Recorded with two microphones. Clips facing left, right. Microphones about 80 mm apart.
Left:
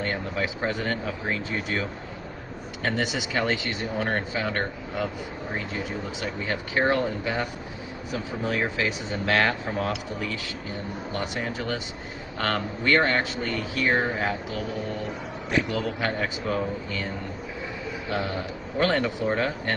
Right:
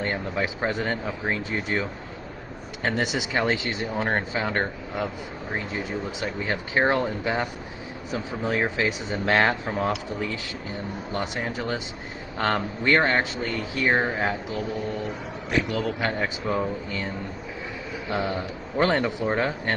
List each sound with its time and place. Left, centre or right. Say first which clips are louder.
0.0 s speech: right 1 dB; right
6.2 s speech: even; right
15.8 s speech: right 1 dB; right
18.1 s speech: right 2 dB; right